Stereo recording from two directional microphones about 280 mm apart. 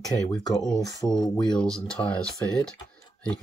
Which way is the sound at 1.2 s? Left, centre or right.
Centre.